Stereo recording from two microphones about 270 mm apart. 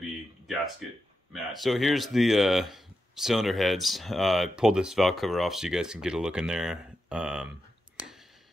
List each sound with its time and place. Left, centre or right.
0.8 s speech: centre